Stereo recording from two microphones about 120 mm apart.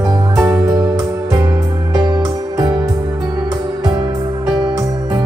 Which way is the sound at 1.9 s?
30° right (ahead or behind).